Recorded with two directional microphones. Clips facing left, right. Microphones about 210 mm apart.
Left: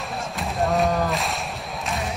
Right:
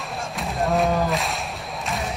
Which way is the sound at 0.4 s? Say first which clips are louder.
Even; centre (ahead or behind).